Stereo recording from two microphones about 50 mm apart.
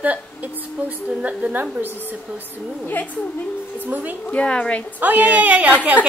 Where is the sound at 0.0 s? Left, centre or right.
Right.